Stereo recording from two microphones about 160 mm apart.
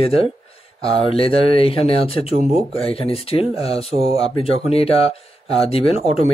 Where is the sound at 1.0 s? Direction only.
35° left (ahead or behind).